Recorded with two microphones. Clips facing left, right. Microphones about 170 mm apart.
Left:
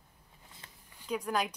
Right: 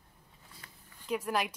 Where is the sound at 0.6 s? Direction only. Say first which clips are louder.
Even; 25° left (ahead or behind).